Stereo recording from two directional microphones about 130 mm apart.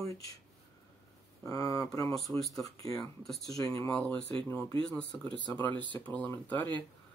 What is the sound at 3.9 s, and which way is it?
Speech, 10° left (ahead or behind).